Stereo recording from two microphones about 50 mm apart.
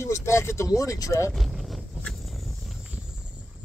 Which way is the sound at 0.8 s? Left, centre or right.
Left.